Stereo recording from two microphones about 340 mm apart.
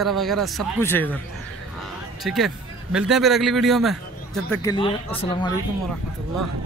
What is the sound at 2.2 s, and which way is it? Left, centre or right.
Speech, centre.